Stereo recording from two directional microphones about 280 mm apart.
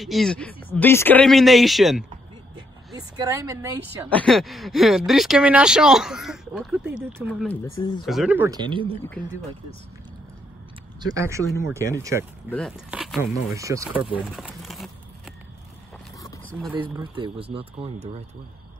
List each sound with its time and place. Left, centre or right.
0.0 s speech: centre
3.0 s speech: centre
4.1 s speech: centre
11.0 s speech: centre
12.4 s speech: centre
12.9 s a sound: centre
13.3 s speech: centre
14.3 s a sound: centre
16.9 s a man's voice: centre